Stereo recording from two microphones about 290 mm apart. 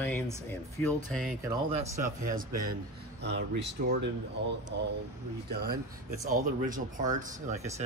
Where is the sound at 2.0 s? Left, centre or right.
Right.